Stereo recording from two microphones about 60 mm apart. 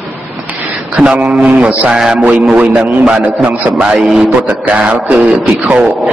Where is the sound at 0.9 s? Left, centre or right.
Right.